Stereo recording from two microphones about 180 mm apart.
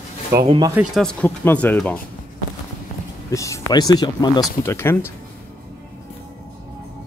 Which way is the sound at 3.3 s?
15° left (ahead or behind).